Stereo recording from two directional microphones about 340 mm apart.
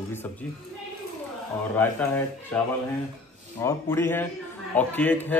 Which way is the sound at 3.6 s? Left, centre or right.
Centre.